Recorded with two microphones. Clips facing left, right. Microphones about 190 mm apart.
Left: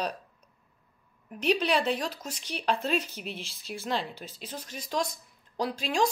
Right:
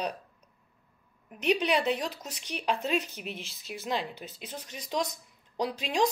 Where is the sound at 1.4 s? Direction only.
15° right (ahead or behind).